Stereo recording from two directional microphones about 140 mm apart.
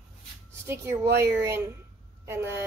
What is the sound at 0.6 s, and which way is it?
Speech, 20° right (ahead or behind).